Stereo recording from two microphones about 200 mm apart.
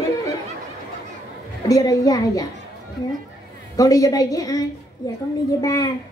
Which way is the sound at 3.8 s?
15° left (ahead or behind).